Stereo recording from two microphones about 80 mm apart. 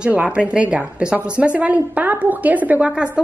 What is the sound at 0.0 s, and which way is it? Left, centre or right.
A woman's voice, centre.